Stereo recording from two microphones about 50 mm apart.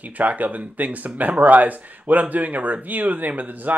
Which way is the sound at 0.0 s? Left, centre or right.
Right.